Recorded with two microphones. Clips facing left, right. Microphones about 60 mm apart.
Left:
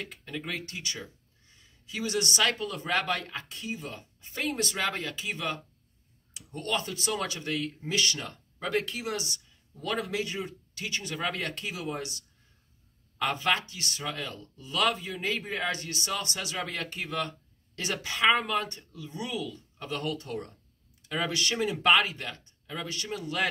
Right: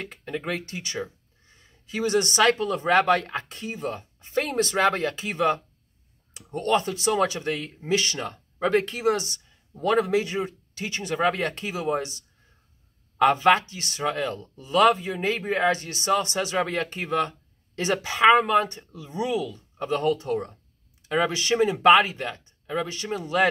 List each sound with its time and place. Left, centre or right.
0.0 s speech: right